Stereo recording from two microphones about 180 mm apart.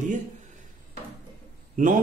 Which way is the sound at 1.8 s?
50° right (ahead or behind).